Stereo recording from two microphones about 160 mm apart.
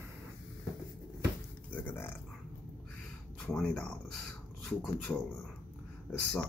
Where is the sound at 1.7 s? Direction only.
10° left (ahead or behind).